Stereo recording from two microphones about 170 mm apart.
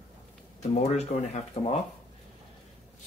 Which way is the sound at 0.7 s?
40° left (ahead or behind).